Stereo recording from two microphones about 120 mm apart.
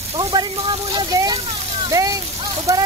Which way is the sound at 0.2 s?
35° right (ahead or behind).